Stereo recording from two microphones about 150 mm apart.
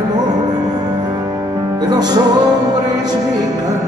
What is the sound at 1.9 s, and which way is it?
Music, 25° right (ahead or behind).